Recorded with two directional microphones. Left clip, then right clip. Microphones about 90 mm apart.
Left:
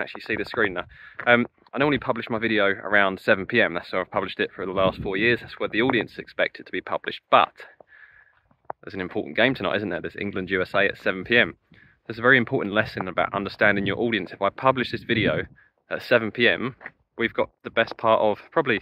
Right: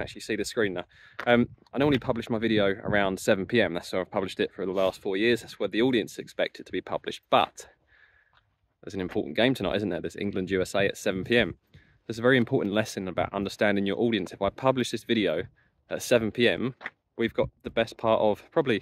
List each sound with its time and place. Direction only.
0.0 s speech: 35° right (ahead or behind)
8.8 s speech: 40° right (ahead or behind)